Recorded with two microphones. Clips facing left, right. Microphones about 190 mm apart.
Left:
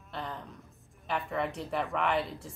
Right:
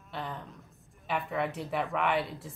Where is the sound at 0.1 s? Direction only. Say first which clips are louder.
Right 1 dB; centre (ahead or behind).